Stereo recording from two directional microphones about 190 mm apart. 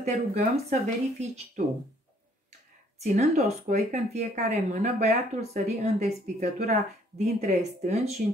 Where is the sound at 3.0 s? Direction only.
35° right (ahead or behind).